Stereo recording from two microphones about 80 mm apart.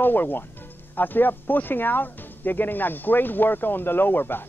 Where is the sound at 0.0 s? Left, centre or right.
Left.